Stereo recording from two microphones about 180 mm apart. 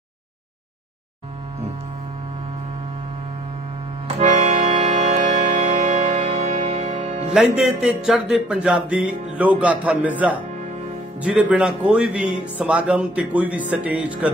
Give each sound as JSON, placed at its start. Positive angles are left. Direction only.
{"t": 4.2, "sound": "music", "side_deg": -40}
{"t": 7.3, "sound": "speech", "side_deg": -5}